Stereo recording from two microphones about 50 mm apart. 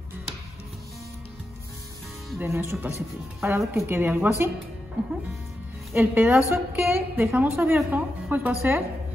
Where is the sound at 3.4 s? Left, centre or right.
Right.